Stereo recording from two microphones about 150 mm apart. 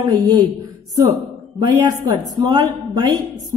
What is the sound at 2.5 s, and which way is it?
Speech, 30° right (ahead or behind).